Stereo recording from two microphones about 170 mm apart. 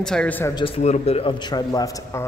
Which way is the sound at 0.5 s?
35° left (ahead or behind).